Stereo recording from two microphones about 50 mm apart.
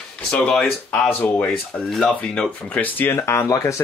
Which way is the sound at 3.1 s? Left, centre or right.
Left.